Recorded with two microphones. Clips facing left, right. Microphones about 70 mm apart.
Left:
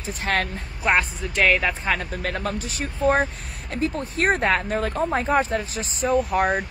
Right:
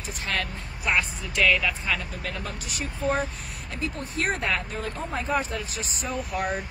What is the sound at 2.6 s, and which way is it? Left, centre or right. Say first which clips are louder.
Speech: left 5 dB; left.